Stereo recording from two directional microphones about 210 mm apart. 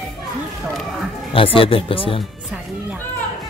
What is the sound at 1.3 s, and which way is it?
Speech, 25° left (ahead or behind).